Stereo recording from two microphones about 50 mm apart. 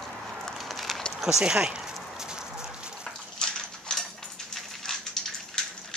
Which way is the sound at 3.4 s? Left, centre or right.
Centre.